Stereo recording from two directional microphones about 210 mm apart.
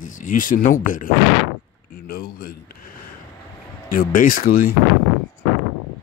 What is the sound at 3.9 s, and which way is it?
Speech, 40° left (ahead or behind).